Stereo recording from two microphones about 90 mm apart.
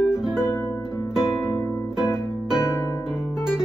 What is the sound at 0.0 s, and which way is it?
Music, 5° right (ahead or behind).